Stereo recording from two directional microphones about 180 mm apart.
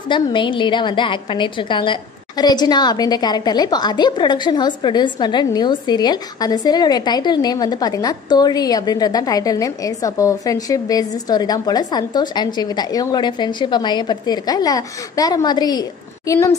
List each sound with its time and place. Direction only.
0.1 s a woman's voice: 25° left (ahead or behind)